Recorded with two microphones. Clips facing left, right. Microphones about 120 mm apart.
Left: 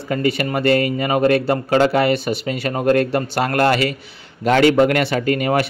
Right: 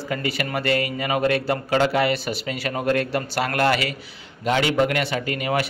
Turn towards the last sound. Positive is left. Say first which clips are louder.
# left 6 dB
turn(degrees=45)  # may be behind; listen again after turning